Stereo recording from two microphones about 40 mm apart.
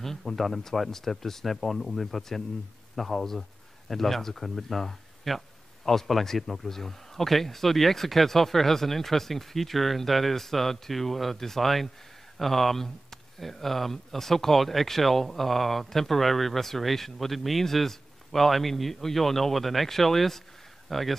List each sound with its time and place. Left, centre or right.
0.0 s speech: centre